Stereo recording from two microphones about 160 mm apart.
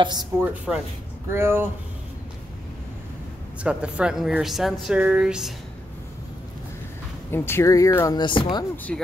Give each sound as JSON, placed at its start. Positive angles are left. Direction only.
{"t": 0.0, "sound": "speech", "side_deg": -25}
{"t": 0.5, "sound": "a woman's voice", "side_deg": -5}
{"t": 3.6, "sound": "a woman's voice", "side_deg": -5}
{"t": 7.2, "sound": "speech", "side_deg": 15}
{"t": 8.2, "sound": "speech", "side_deg": 30}
{"t": 8.9, "sound": "a woman's voice", "side_deg": 5}